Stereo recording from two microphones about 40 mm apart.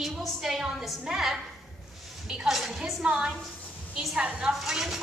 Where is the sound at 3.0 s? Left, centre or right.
Right.